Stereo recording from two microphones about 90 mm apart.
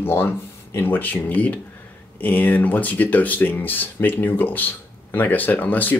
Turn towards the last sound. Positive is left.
turn(degrees=20)  # may be behind; listen again after turning